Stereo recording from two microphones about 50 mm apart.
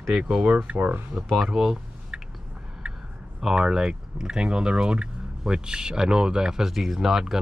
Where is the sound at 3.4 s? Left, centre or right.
Centre.